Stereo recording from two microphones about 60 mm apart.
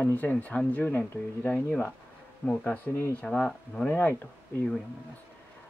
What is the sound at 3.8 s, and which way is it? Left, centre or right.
Speech, left.